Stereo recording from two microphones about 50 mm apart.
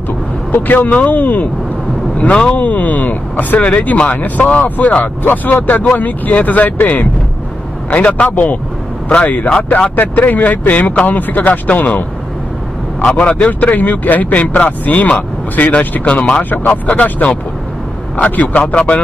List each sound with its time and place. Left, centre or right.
0.5 s speech: left
2.5 s speech: left
13.0 s speech: left